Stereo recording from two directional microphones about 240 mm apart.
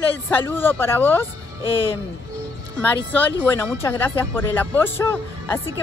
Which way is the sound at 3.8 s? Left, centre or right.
Centre.